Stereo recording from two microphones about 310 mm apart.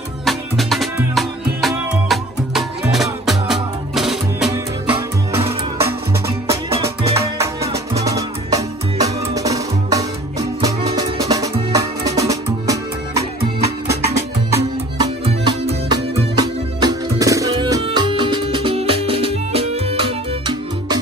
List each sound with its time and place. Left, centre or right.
0.2 s music: centre